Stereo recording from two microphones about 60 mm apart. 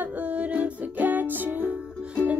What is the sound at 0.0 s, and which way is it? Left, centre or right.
Music, right.